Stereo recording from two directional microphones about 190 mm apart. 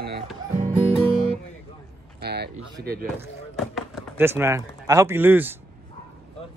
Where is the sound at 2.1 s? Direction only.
60° right (ahead or behind).